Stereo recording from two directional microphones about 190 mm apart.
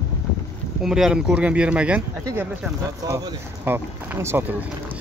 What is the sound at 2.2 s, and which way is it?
Speech, 15° right (ahead or behind).